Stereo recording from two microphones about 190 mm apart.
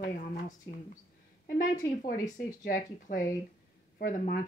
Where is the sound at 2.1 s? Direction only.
45° left (ahead or behind).